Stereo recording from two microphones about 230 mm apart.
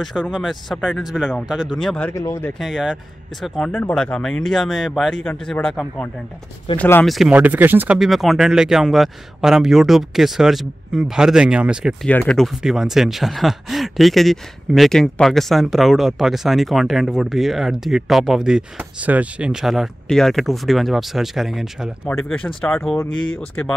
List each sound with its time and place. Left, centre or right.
0.0 s speech: centre
2.6 s speech: centre
22.6 s speech: centre
23.0 s speech: left